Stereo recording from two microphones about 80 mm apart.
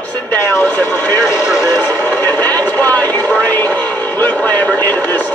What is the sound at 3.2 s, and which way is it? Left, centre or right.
Speech, left.